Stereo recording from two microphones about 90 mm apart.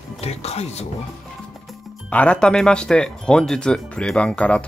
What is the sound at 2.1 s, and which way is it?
A man's voice, 15° left (ahead or behind).